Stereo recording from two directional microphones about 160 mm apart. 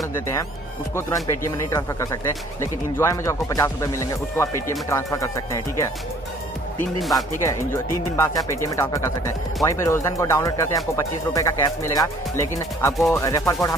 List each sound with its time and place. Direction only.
1.2 s speech: 20° left (ahead or behind)
7.0 s speech: centre (ahead or behind)
7.3 s speech: 15° left (ahead or behind)
12.9 s speech: centre (ahead or behind)
13.2 s speech: 20° left (ahead or behind)